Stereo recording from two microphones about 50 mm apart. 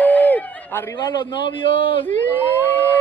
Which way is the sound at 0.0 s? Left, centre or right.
Left.